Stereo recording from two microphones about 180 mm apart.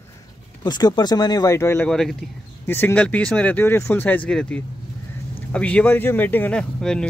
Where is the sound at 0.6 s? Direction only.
25° left (ahead or behind).